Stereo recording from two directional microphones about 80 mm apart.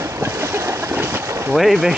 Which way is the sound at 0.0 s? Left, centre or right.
Right.